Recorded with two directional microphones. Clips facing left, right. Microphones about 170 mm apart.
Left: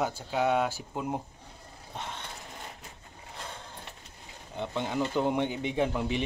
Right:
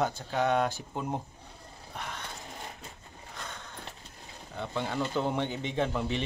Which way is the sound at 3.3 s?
30° left (ahead or behind).